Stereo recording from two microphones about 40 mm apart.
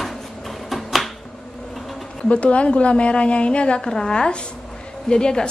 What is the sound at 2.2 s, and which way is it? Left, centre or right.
A woman's voice, left.